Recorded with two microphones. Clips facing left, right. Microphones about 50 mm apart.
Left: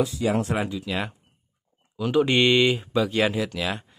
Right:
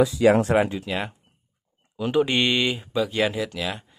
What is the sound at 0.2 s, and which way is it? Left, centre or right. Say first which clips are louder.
Speech: right 7 dB; right.